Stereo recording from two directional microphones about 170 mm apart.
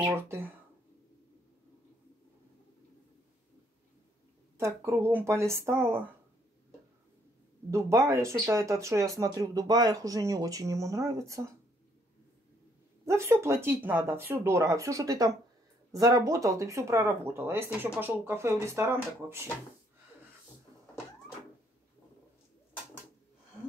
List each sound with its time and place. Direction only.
0.1 s speech: 15° right (ahead or behind)
4.6 s speech: 15° right (ahead or behind)
7.7 s speech: 15° right (ahead or behind)
13.0 s speech: 15° right (ahead or behind)